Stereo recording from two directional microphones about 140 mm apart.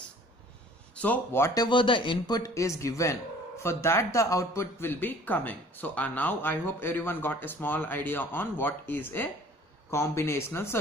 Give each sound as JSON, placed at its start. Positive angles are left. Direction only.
{"t": 0.9, "sound": "speech", "side_deg": 10}